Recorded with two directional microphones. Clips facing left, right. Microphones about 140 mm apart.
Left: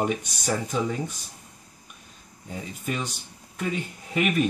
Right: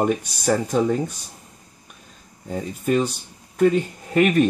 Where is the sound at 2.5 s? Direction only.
45° right (ahead or behind).